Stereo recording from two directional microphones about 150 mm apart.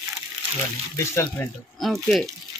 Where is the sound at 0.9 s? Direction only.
20° left (ahead or behind).